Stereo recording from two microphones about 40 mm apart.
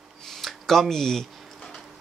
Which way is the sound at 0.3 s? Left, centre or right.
Centre.